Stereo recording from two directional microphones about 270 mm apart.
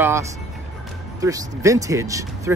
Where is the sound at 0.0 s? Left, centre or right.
Centre.